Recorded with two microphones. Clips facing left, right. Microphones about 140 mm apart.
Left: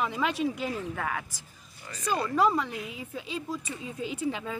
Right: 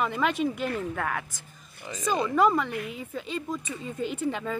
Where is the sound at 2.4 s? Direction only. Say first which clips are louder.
Right 2 dB; centre (ahead or behind).